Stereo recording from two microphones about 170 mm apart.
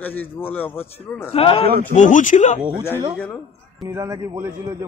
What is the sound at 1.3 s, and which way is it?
Speech, 35° left (ahead or behind).